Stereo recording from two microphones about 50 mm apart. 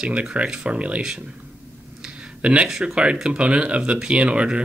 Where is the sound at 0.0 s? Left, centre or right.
Right.